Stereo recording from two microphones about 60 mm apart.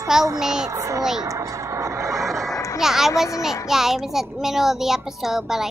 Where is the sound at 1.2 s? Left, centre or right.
Right.